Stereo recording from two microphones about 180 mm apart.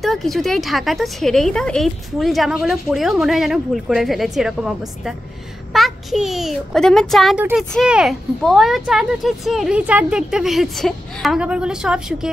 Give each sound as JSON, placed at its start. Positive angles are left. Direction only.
{"t": 0.0, "sound": "a woman's voice", "side_deg": 0}